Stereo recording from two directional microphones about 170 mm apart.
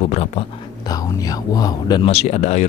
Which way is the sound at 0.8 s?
20° left (ahead or behind).